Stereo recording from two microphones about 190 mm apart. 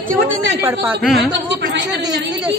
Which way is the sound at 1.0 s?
Centre (ahead or behind).